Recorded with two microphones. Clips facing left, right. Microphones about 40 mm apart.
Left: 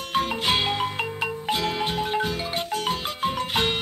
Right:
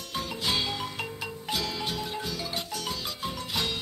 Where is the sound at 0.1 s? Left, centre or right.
Left.